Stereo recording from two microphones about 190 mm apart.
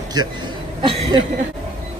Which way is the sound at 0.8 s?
25° right (ahead or behind).